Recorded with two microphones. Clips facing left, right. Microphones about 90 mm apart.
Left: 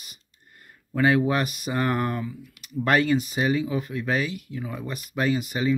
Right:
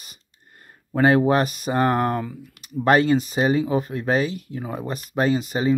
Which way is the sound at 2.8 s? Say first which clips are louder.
Right 4 dB; 30° right (ahead or behind).